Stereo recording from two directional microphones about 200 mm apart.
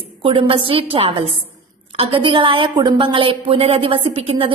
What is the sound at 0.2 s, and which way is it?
A woman's voice, 25° right (ahead or behind).